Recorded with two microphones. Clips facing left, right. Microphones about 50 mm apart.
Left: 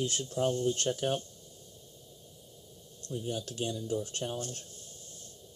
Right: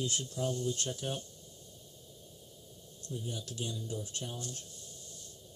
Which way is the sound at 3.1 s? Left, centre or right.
Left.